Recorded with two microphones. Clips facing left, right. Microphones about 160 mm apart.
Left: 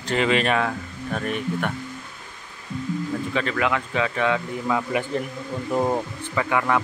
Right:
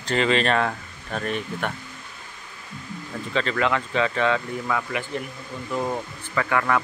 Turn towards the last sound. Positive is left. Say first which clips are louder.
# left 1 dB
turn(degrees=15)  # may be behind; listen again after turning